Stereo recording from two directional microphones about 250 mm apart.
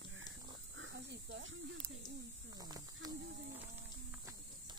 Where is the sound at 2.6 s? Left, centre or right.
Centre.